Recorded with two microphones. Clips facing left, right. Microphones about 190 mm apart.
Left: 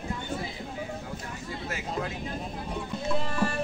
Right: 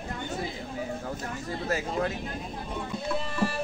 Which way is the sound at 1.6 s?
40° right (ahead or behind).